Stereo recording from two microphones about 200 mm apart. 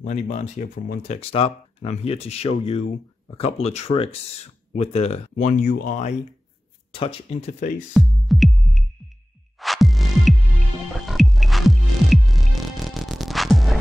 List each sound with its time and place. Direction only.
0.0 s speech: 35° left (ahead or behind)
1.1 s speech: 30° left (ahead or behind)
6.9 s speech: 30° left (ahead or behind)
7.9 s music: centre (ahead or behind)